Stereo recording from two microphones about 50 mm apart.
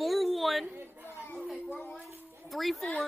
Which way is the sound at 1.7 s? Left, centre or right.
Left.